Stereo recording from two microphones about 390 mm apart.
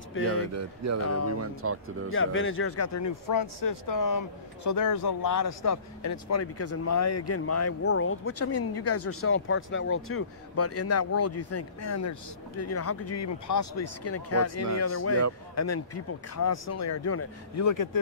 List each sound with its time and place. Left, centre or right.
0.5 s speech: right
1.0 s speech: left
1.4 s speech: right
2.1 s speech: left